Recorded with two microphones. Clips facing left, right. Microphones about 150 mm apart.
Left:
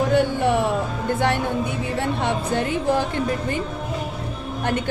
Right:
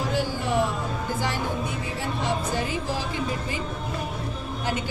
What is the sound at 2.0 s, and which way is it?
Speech, 60° left (ahead or behind).